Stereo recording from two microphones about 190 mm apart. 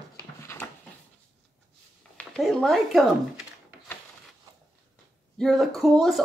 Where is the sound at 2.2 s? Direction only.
Centre (ahead or behind).